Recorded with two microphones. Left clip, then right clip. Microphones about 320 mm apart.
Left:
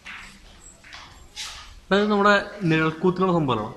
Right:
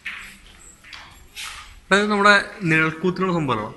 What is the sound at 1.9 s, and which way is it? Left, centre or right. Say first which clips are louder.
A man's voice: right 3 dB; centre.